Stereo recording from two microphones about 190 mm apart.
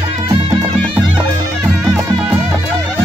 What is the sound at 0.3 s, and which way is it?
Music, 25° right (ahead or behind).